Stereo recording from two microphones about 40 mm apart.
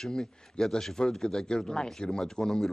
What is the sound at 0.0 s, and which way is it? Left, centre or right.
Speech, centre.